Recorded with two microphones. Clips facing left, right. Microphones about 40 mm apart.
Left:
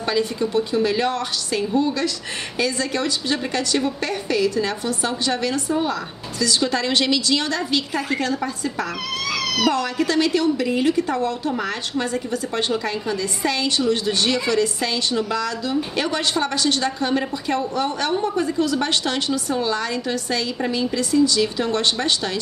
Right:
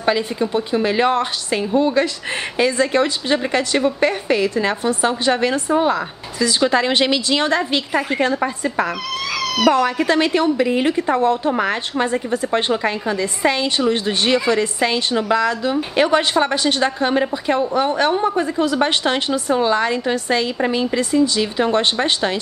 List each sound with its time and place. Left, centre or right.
0.0 s a woman's voice: right
9.3 s cat: centre
9.7 s a woman's voice: right